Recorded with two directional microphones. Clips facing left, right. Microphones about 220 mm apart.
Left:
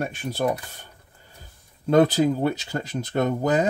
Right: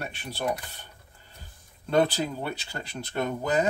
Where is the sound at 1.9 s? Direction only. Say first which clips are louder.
Left 6 dB; 40° left (ahead or behind).